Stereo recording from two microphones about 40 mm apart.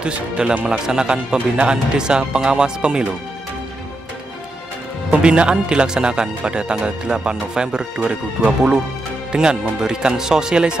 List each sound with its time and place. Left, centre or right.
0.0 s speech: right
5.1 s speech: right